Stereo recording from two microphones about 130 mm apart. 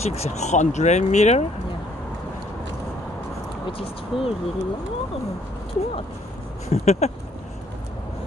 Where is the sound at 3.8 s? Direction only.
45° left (ahead or behind).